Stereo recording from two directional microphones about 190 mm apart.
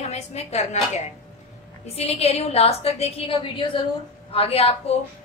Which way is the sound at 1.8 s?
35° left (ahead or behind).